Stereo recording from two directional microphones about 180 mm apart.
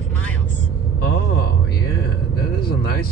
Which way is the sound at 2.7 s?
60° left (ahead or behind).